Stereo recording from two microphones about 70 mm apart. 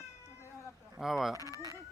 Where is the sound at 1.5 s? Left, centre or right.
Right.